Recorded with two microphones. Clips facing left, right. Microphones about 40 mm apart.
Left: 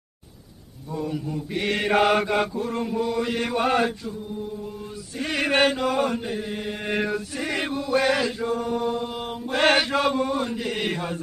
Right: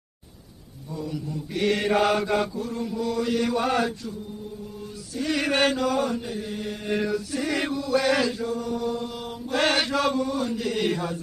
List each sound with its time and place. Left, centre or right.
0.9 s mantra: left
3.0 s chant: left
3.3 s mantra: left
5.1 s mantra: left
8.1 s chant: centre
8.5 s mantra: left
9.8 s chant: left
10.2 s mantra: left